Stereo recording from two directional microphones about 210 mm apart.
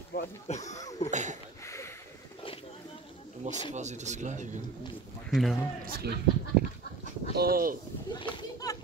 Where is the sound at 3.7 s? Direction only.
35° right (ahead or behind).